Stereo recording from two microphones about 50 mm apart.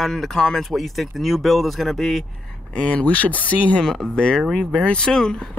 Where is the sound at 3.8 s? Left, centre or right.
Centre.